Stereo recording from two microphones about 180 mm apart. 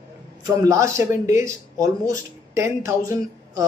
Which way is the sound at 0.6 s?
15° right (ahead or behind).